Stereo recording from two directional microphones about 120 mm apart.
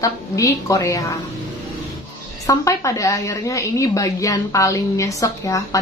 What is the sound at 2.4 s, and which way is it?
A woman's voice, 25° left (ahead or behind).